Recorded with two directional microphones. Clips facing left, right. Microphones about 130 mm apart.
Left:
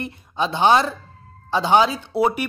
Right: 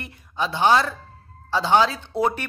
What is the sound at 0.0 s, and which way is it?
A woman's voice, 20° left (ahead or behind).